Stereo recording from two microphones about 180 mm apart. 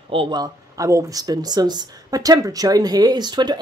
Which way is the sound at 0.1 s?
25° right (ahead or behind).